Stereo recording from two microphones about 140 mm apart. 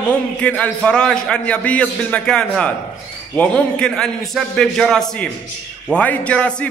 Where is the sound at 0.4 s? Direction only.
10° left (ahead or behind).